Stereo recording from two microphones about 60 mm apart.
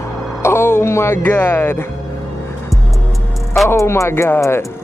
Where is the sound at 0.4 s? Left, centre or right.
Left.